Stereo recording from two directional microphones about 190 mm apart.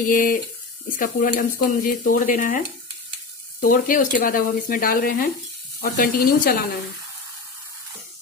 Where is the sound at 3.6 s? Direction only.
45° left (ahead or behind).